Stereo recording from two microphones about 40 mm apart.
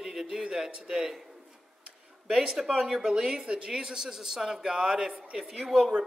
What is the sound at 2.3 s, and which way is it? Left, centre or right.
A woman's voice, centre.